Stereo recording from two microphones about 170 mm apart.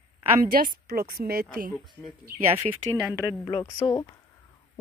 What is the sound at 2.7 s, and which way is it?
Speech, 40° right (ahead or behind).